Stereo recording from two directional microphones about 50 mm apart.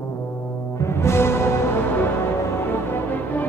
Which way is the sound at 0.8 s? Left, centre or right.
Left.